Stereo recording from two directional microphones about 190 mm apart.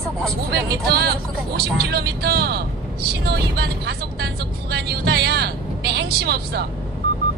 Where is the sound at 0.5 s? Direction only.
55° right (ahead or behind).